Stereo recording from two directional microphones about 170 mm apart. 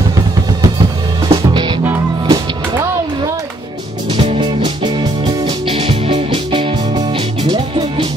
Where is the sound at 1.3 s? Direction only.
25° right (ahead or behind).